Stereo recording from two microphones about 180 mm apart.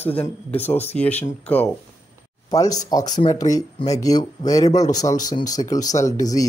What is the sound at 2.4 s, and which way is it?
Speech, 20° left (ahead or behind).